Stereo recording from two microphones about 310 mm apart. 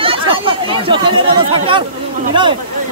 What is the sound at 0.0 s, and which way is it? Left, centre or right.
Chatter, centre.